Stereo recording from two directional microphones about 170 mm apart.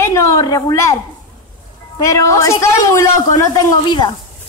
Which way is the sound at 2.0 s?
20° left (ahead or behind).